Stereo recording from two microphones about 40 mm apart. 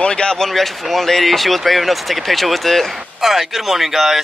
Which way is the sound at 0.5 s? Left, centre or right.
Centre.